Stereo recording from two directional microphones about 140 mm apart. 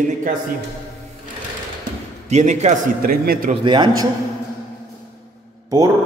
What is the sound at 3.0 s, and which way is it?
Speech, 90° right.